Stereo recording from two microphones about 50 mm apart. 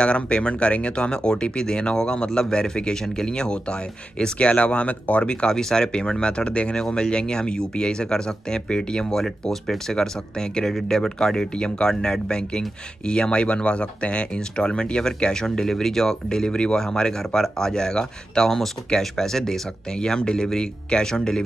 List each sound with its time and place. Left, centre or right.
0.0 s speech: left
5.3 s speech: centre